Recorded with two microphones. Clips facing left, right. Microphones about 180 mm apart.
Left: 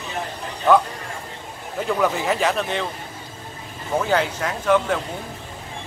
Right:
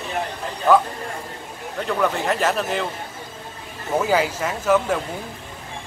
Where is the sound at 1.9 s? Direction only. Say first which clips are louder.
Left 1 dB; 5° left (ahead or behind).